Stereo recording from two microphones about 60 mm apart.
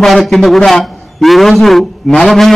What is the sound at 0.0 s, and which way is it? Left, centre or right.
A man's voice, centre.